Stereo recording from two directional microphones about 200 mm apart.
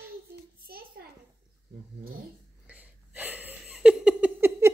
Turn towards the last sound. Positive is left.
turn(degrees=-10)  # may be behind; listen again after turning